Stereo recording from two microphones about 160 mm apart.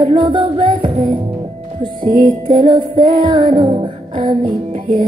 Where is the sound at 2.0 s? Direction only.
50° right (ahead or behind).